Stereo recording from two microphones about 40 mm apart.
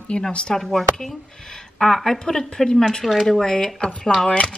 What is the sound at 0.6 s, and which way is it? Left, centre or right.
Speech, centre.